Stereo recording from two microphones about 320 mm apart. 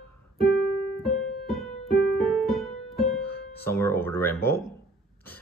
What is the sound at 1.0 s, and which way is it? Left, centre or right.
Music, centre.